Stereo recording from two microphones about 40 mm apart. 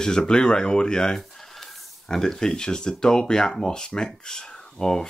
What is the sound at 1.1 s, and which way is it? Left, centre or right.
Speech, centre.